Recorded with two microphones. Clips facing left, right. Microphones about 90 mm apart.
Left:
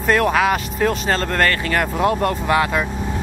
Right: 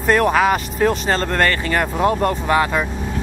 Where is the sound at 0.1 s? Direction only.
Centre (ahead or behind).